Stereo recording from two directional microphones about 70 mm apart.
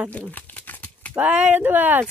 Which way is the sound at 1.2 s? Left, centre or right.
Right.